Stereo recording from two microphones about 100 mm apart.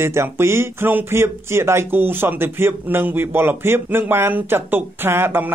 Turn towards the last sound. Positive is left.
turn(degrees=-20)  # may be behind; listen again after turning